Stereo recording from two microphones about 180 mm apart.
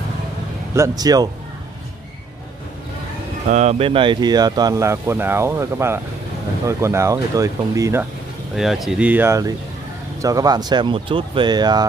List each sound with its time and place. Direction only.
0.7 s speech: 20° right (ahead or behind)
3.4 s speech: 40° right (ahead or behind); by 8.1 s 15° right (ahead or behind)
8.5 s speech: centre (ahead or behind); by 11.8 s 25° right (ahead or behind)